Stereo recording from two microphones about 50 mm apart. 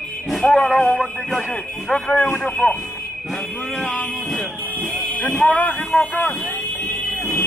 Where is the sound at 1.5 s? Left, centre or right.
Left.